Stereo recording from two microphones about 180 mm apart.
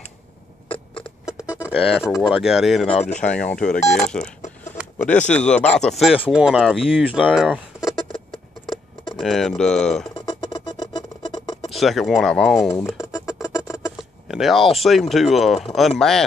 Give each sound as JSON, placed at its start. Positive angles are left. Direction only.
{"t": 1.7, "sound": "speech", "side_deg": 0}
{"t": 2.9, "sound": "speech", "side_deg": 40}
{"t": 3.3, "sound": "speech", "side_deg": 5}
{"t": 7.8, "sound": "a sound", "side_deg": 25}
{"t": 9.1, "sound": "speech", "side_deg": 0}
{"t": 10.2, "sound": "music", "side_deg": 25}
{"t": 11.7, "sound": "speech", "side_deg": 0}
{"t": 12.6, "sound": "speech", "side_deg": 15}
{"t": 13.1, "sound": "music", "side_deg": 15}
{"t": 14.2, "sound": "speech", "side_deg": 0}